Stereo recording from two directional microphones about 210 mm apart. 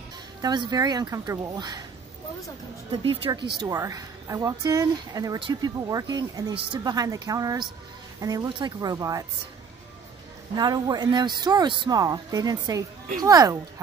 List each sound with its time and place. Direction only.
0.4 s speech: 20° right (ahead or behind)
3.0 s a man's voice: 25° right (ahead or behind)
10.5 s a man's voice: 20° right (ahead or behind)